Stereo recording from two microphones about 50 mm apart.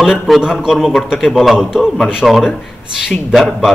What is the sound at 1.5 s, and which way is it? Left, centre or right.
A man's voice, centre.